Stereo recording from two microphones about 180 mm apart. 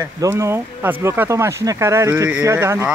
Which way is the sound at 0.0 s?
15° right (ahead or behind).